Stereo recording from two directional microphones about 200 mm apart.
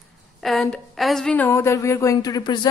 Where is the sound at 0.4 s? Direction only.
Centre (ahead or behind).